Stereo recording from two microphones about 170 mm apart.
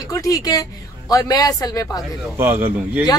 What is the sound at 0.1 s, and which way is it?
Speech, 20° left (ahead or behind).